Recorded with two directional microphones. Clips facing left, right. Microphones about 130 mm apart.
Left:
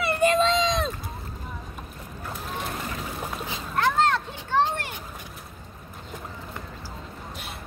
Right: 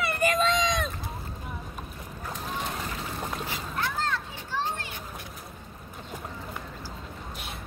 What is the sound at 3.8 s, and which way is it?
Children playing, 70° left (ahead or behind).